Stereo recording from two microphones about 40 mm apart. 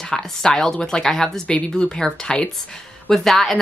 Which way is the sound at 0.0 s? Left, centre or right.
Centre.